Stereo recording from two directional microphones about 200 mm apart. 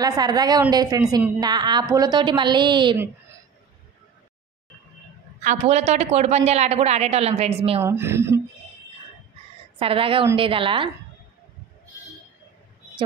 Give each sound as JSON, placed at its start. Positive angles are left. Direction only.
{"t": 0.0, "sound": "a woman's voice", "side_deg": -20}
{"t": 5.4, "sound": "a woman's voice", "side_deg": -35}
{"t": 7.8, "sound": "a woman's voice", "side_deg": -10}
{"t": 9.8, "sound": "a woman's voice", "side_deg": -25}